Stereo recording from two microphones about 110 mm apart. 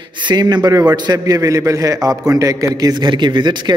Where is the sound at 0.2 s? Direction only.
40° right (ahead or behind).